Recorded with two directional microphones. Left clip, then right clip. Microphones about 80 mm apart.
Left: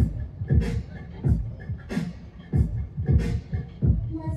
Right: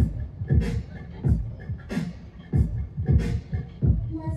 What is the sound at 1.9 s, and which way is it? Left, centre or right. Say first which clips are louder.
Beatboxing: even; right.